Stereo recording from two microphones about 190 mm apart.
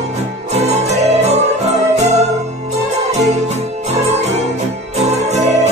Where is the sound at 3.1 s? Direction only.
35° right (ahead or behind).